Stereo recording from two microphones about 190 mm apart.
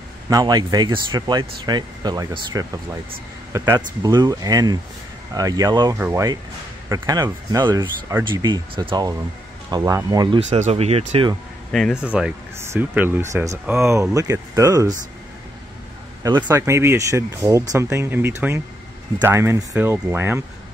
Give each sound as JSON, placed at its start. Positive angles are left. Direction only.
{"t": 0.3, "sound": "speech", "side_deg": -20}
{"t": 10.5, "sound": "speech", "side_deg": -35}
{"t": 12.0, "sound": "speech", "side_deg": -5}
{"t": 16.2, "sound": "speech", "side_deg": -20}